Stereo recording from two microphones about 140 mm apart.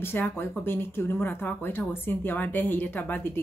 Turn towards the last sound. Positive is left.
turn(degrees=15)  # may be behind; listen again after turning